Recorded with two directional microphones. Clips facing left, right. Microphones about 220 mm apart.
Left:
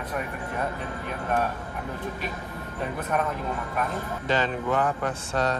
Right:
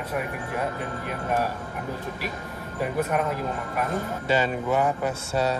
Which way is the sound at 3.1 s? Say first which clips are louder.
Right 1 dB; 10° right (ahead or behind).